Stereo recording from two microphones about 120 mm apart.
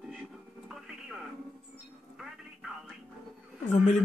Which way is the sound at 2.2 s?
5° right (ahead or behind).